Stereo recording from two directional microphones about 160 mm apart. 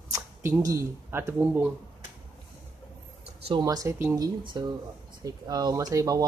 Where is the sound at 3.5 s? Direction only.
25° right (ahead or behind).